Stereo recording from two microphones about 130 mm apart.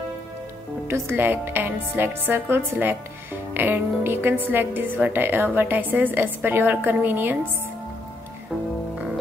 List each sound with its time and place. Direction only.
0.8 s a woman's voice: 20° right (ahead or behind)